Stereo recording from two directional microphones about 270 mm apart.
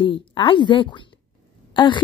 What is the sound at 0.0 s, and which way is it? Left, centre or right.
A woman's voice, centre.